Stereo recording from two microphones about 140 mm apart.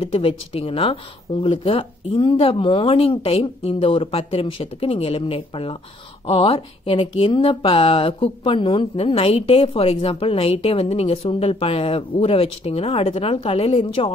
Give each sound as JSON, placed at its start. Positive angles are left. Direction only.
{"t": 0.0, "sound": "speech", "side_deg": 40}